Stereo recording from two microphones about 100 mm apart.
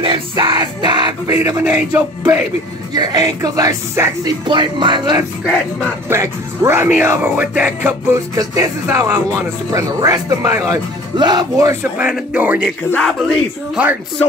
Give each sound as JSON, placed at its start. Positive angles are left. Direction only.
{"t": 0.0, "sound": "music", "side_deg": -60}
{"t": 1.2, "sound": "speech", "side_deg": -30}
{"t": 1.6, "sound": "speech", "side_deg": -10}
{"t": 2.9, "sound": "speech", "side_deg": -45}
{"t": 6.0, "sound": "speech", "side_deg": -30}
{"t": 8.1, "sound": "speech", "side_deg": -30}
{"t": 12.0, "sound": "speech", "side_deg": -15}
{"t": 12.9, "sound": "speech", "side_deg": 5}
{"t": 13.8, "sound": "speech", "side_deg": -10}